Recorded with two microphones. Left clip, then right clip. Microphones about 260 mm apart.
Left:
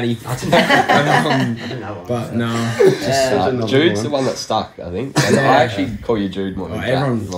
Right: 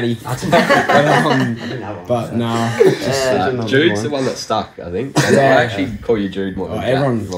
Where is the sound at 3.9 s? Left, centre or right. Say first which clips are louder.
Even; left.